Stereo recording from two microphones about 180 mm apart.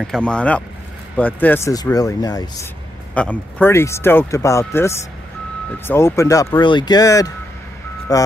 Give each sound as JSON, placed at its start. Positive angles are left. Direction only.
{"t": 0.0, "sound": "speech", "side_deg": 5}
{"t": 3.2, "sound": "speech", "side_deg": 10}